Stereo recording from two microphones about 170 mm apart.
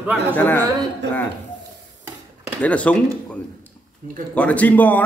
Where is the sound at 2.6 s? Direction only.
10° left (ahead or behind).